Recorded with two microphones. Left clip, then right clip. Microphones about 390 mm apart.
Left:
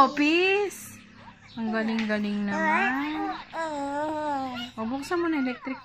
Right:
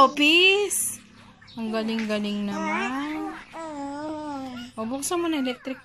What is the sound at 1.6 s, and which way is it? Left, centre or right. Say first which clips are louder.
Speech: even; centre.